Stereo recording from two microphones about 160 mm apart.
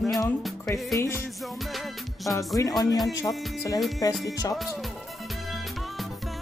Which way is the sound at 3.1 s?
20° left (ahead or behind).